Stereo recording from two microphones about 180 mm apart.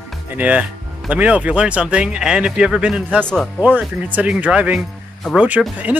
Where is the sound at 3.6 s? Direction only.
10° right (ahead or behind).